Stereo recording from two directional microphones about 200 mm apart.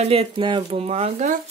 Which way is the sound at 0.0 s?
30° right (ahead or behind).